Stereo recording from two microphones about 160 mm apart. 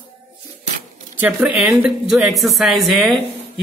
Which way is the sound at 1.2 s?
10° right (ahead or behind).